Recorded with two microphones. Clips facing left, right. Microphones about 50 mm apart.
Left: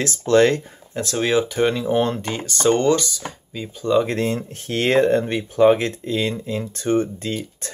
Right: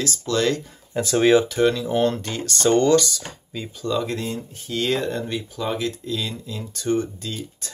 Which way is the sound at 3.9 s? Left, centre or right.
Left.